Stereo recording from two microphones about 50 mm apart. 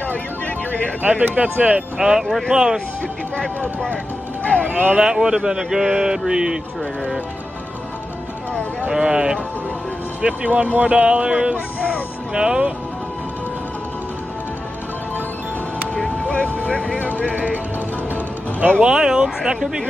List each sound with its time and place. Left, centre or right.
1.0 s speech: right
2.2 s speech: centre
2.5 s a man's voice: centre
4.4 s music: left
4.9 s a man's voice: centre
8.8 s a man's voice: centre
10.2 s a man's voice: right
16.5 s speech: centre
18.8 s a man's voice: centre